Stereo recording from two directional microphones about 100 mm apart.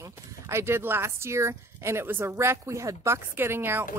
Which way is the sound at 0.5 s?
25° right (ahead or behind).